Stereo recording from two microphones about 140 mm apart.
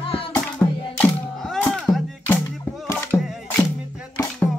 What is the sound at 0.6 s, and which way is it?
Music, 5° left (ahead or behind).